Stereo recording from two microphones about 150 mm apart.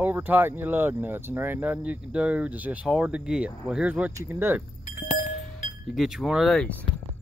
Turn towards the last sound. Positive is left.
turn(degrees=10)  # may be behind; listen again after turning